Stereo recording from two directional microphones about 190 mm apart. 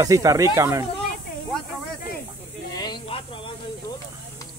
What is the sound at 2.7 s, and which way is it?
Snake, 20° left (ahead or behind).